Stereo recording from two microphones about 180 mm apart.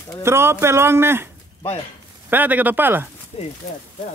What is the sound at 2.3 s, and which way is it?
Speech, 10° right (ahead or behind).